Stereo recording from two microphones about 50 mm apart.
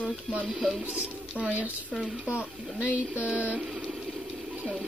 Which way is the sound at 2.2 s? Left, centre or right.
Right.